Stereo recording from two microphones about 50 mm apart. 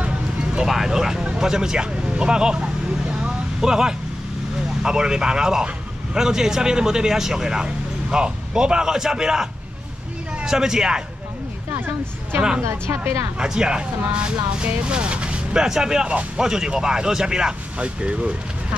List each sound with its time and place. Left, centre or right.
0.6 s speech: centre
1.4 s vehicle: centre
3.6 s speech: centre
12.4 s speech: centre
12.6 s speech: right
13.4 s speech: centre